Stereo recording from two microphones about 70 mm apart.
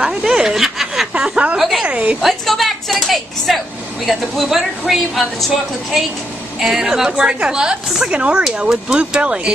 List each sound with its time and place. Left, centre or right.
0.0 s speech: centre
1.1 s speech: centre
1.6 s speech: centre
1.9 s speech: centre
2.2 s speech: centre
6.6 s speech: centre